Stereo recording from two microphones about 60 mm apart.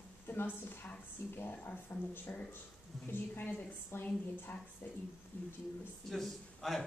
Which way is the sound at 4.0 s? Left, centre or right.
Left.